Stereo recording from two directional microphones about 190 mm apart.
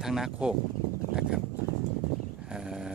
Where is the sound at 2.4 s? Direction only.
5° right (ahead or behind).